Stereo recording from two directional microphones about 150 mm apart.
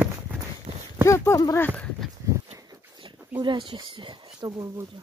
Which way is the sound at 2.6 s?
30° right (ahead or behind).